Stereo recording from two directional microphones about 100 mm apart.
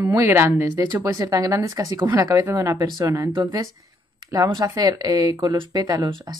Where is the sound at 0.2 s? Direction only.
25° right (ahead or behind).